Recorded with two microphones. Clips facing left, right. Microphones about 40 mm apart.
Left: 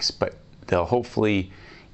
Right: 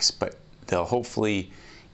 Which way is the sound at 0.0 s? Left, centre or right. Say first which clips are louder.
Left 2 dB; centre.